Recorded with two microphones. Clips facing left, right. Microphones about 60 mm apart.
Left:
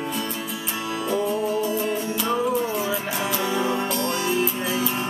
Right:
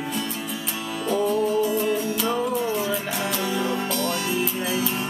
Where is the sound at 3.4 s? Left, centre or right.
Centre.